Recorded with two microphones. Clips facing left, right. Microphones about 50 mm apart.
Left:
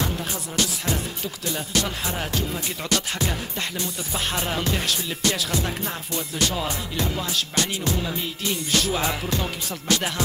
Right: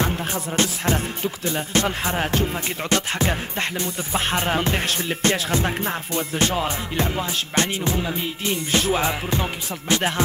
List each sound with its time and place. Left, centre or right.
0.0 s music: right